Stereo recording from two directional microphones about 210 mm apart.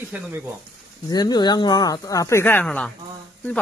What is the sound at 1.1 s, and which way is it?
Speech, 20° left (ahead or behind).